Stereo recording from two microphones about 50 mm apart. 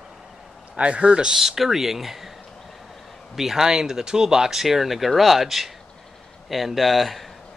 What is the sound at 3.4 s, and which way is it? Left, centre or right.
Speech, centre.